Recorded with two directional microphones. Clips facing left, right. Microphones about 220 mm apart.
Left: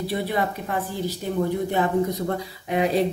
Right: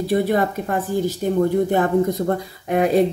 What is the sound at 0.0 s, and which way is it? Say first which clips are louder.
Speech: right 6 dB; 45° right (ahead or behind).